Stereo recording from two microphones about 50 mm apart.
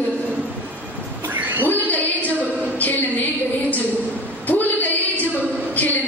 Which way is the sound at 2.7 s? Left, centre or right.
Left.